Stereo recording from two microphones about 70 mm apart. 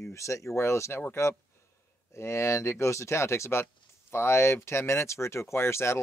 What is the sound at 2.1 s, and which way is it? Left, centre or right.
Speech, left.